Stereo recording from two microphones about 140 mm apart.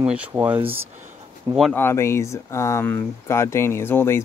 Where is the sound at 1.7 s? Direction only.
15° left (ahead or behind).